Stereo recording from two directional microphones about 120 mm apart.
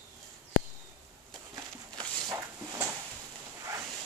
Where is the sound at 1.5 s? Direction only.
35° right (ahead or behind).